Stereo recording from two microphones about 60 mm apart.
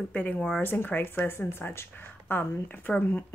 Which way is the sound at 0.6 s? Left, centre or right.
Left.